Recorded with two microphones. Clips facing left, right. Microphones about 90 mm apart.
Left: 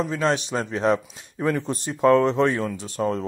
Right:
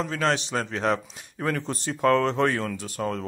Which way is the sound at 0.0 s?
20° left (ahead or behind).